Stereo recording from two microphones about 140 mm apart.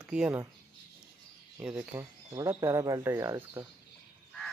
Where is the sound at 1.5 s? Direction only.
15° right (ahead or behind).